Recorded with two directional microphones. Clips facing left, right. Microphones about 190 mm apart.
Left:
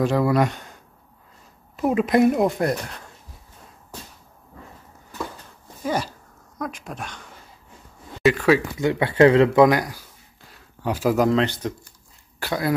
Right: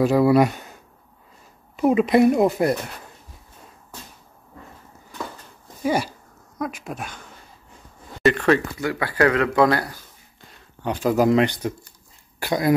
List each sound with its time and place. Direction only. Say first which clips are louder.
0.0 s speech: right 4 dB; 10° right (ahead or behind)
1.8 s speech: right 2 dB; centre (ahead or behind)
6.6 s speech: right 2 dB; 5° right (ahead or behind)
8.2 s speech: even; 5° left (ahead or behind)
8.7 s speech: left 4 dB; 20° left (ahead or behind); by 11.1 s 5° left (ahead or behind)
11.1 s speech: right 5 dB; 10° right (ahead or behind)